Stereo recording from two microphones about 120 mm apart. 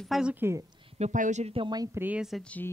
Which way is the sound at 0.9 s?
80° right.